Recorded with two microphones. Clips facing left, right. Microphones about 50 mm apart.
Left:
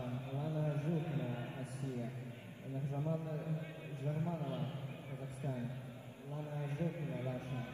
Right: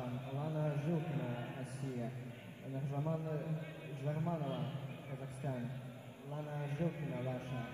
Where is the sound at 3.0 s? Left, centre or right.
Right.